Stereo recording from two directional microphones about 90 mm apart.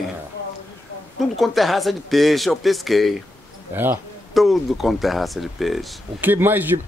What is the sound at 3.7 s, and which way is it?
Speech, 25° right (ahead or behind).